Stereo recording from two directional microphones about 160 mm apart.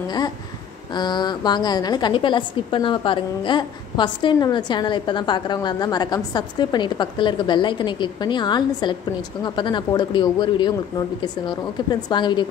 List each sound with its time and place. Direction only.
0.9 s a woman's voice: 25° left (ahead or behind)